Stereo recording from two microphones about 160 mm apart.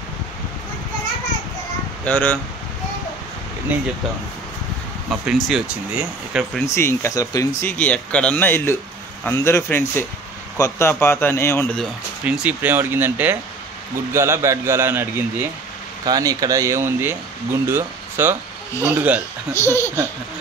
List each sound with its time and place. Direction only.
2.0 s speech: 10° left (ahead or behind)
3.7 s a man's voice: 10° right (ahead or behind)
5.1 s speech: 5° right (ahead or behind)
6.6 s speech: 15° left (ahead or behind)
7.7 s speech: 10° left (ahead or behind)
11.7 s speech: centre (ahead or behind)
12.4 s a man's voice: 10° right (ahead or behind)
16.1 s a man's voice: 20° right (ahead or behind)
19.5 s speech: 15° left (ahead or behind)